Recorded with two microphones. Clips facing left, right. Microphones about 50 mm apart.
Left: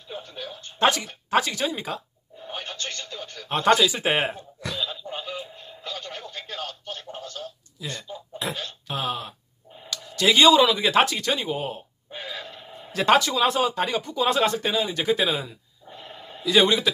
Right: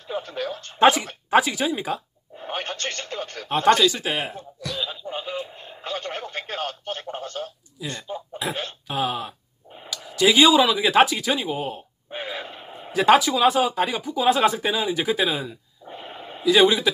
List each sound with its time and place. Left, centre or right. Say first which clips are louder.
0.1 s speech: right 8 dB; right
0.7 s speech: right 5 dB; centre
2.3 s radio: right 5 dB; right
3.4 s speech: right 2 dB; centre
4.0 s speech: left 3 dB; left
4.7 s a sound: right 2 dB; centre
5.6 s radio: right 5 dB; right
7.8 s speech: right 3 dB; right
8.4 s speech: right 1 dB; centre
12.1 s a sound: right 4 dB; right
12.9 s speech: right 3 dB; centre
15.9 s a sound: right 4 dB; right
16.4 s speech: right 2 dB; centre